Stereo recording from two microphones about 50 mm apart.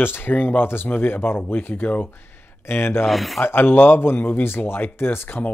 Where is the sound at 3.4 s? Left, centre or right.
Left.